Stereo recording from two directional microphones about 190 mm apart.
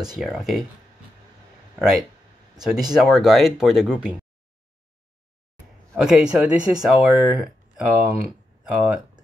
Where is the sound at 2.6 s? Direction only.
5° right (ahead or behind).